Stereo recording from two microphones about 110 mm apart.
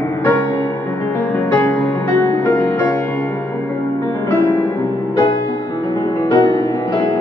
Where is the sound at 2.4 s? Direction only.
20° left (ahead or behind).